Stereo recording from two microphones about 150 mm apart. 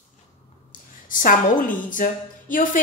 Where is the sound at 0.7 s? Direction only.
65° left (ahead or behind).